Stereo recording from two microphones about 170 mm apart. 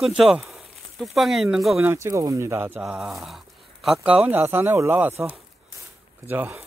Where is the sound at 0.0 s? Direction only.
5° right (ahead or behind).